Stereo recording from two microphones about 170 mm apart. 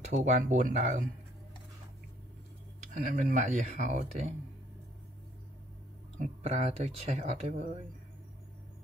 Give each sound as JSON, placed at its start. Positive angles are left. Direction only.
{"t": 0.0, "sound": "speech", "side_deg": -45}
{"t": 2.9, "sound": "speech", "side_deg": -50}
{"t": 6.2, "sound": "speech", "side_deg": -45}